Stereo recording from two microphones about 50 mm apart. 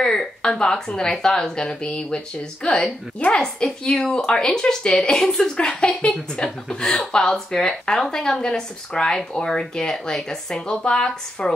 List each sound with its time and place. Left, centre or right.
0.0 s a woman's voice: centre
6.0 s a woman's voice: left